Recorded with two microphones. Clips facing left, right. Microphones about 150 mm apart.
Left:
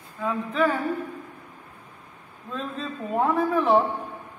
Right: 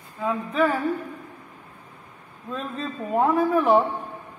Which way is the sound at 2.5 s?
5° right (ahead or behind).